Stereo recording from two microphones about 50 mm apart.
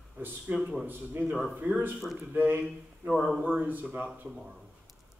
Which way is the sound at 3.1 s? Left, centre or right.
Centre.